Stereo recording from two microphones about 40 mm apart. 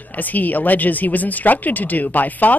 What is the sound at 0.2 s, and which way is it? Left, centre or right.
Speech, left.